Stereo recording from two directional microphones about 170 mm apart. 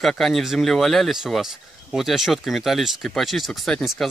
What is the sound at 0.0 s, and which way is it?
Speech, centre (ahead or behind).